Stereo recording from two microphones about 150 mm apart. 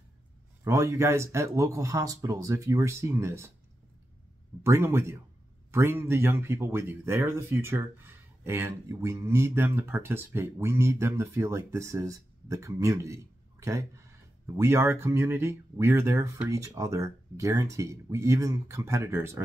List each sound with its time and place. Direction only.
0.7 s speech: 20° right (ahead or behind)
4.6 s speech: 15° right (ahead or behind)